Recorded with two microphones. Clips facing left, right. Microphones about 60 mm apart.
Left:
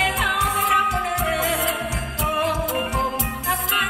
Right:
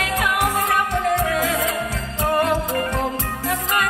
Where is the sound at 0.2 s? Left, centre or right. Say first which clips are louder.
Right 2 dB; centre.